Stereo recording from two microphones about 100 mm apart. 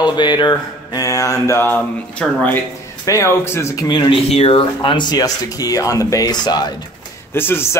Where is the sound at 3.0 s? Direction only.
30° left (ahead or behind).